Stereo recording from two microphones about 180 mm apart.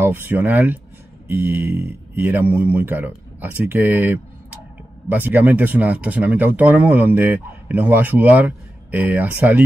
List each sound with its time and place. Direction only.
0.0 s speech: 10° right (ahead or behind)